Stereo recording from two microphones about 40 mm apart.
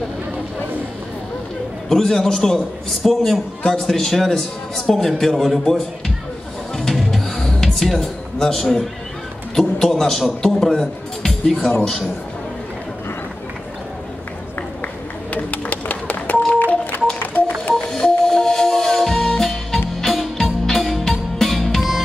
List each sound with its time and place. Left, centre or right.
1.9 s a man's voice: centre
5.7 s speech: centre
7.3 s music: centre
9.6 s a man's voice: centre
15.3 s telephone dialing: left
17.2 s music: left
17.7 s music: centre